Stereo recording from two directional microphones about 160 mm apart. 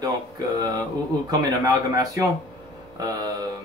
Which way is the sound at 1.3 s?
25° right (ahead or behind).